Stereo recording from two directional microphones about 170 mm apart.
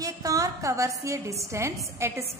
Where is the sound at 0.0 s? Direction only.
20° right (ahead or behind).